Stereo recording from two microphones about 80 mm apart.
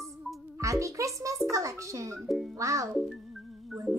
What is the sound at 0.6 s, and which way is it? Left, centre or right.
Speech, right.